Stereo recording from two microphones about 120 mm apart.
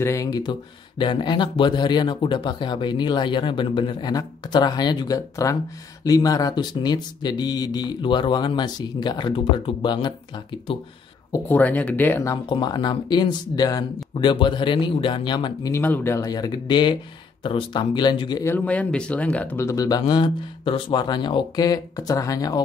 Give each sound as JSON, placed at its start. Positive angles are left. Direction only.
{"t": 0.0, "sound": "speech", "side_deg": 25}
{"t": 11.4, "sound": "speech", "side_deg": 15}
{"t": 12.4, "sound": "speech", "side_deg": 40}
{"t": 14.1, "sound": "speech", "side_deg": 45}
{"t": 15.7, "sound": "speech", "side_deg": 20}
{"t": 18.4, "sound": "speech", "side_deg": 15}
{"t": 20.0, "sound": "speech", "side_deg": 40}